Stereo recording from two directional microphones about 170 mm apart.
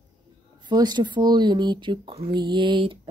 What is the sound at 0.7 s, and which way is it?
Speech, 25° right (ahead or behind).